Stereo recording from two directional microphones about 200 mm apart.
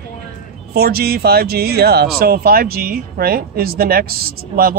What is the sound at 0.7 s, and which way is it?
Speech, 50° right (ahead or behind).